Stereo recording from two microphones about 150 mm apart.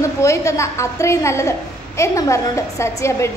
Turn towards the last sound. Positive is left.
turn(degrees=20)  # may be behind; listen again after turning